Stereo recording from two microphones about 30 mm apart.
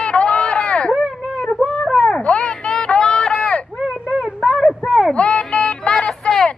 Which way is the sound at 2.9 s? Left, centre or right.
Left.